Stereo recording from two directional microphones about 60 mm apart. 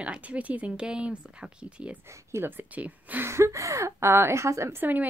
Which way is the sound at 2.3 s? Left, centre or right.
Right.